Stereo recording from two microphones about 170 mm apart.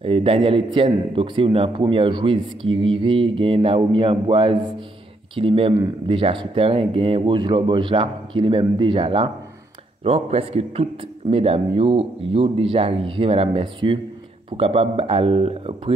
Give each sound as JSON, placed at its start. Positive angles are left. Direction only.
{"t": 0.0, "sound": "speech", "side_deg": -35}